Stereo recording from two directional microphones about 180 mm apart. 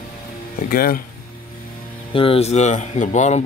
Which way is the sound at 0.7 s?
55° left (ahead or behind).